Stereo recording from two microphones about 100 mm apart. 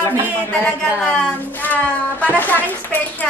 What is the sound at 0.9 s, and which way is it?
Speech, 10° left (ahead or behind).